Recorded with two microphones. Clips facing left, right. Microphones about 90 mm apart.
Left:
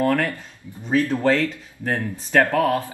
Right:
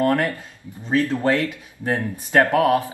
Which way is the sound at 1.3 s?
20° right (ahead or behind).